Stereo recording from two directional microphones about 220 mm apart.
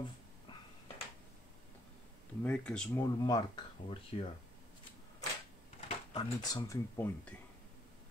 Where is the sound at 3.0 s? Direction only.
20° left (ahead or behind).